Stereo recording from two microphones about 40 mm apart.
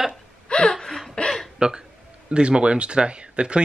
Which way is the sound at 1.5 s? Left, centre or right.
Centre.